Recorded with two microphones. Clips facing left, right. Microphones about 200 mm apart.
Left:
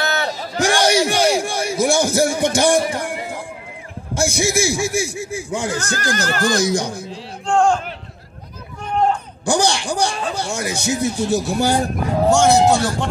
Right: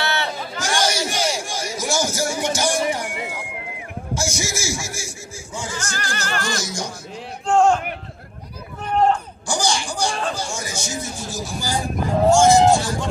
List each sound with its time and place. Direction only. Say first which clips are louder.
0.0 s a sound: left 3 dB; 40° left (ahead or behind)
0.6 s a sound: left 7 dB; 60° left (ahead or behind)
4.1 s speech: left 7 dB; 60° left (ahead or behind)
6.1 s speech: left 6 dB; 35° left (ahead or behind)
6.5 s speech: left 9 dB; 60° left (ahead or behind)
7.4 s speech: even; 5° right (ahead or behind)
9.5 s a man's voice: left 5 dB; 65° left (ahead or behind)